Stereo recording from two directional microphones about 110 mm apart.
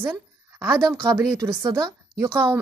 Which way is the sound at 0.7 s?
30° right (ahead or behind).